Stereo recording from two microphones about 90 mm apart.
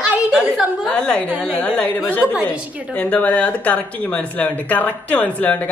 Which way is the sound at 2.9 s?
20° left (ahead or behind).